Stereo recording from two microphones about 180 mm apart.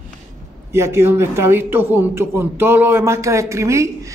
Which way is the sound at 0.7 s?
15° right (ahead or behind).